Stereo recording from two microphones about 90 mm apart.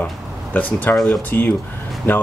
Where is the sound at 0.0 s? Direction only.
20° left (ahead or behind).